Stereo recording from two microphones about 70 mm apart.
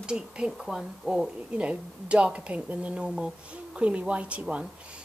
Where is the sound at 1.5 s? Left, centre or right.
Centre.